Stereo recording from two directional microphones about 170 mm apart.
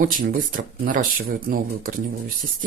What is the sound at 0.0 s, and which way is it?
Speech, 50° right (ahead or behind).